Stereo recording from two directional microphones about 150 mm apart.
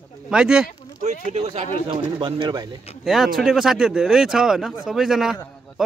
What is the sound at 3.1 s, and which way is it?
A man's voice, centre (ahead or behind).